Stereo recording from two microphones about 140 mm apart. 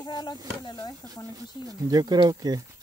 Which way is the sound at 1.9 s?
30° right (ahead or behind).